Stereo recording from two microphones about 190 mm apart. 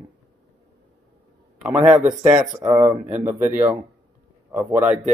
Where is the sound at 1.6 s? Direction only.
5° right (ahead or behind).